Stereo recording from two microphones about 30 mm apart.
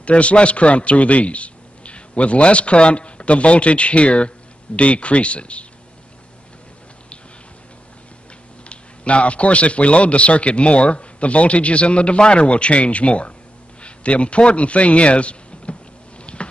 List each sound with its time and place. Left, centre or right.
0.0 s a man's voice: left
8.6 s a man's voice: left
16.3 s a sound: left